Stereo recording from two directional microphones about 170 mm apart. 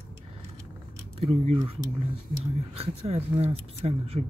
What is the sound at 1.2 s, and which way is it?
Speech, 35° right (ahead or behind).